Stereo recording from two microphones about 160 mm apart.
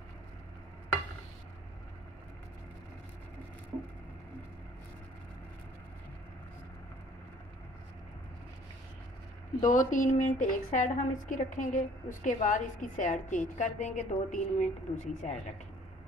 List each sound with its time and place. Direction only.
9.6 s a woman's voice: 50° left (ahead or behind)